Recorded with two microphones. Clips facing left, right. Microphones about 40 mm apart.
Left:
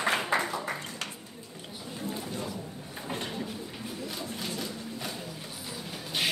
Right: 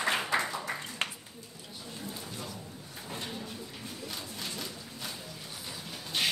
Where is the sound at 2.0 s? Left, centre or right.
Left.